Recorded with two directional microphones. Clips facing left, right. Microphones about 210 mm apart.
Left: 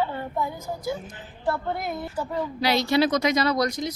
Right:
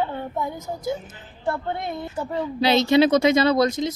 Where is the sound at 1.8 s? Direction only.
25° right (ahead or behind).